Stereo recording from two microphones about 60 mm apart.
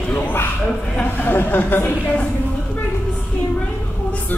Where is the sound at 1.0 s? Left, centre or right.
Left.